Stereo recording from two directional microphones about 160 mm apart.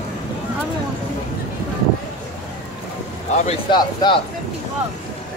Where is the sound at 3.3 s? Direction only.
45° left (ahead or behind).